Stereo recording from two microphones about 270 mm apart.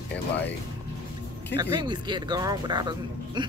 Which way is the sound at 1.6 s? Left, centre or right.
Centre.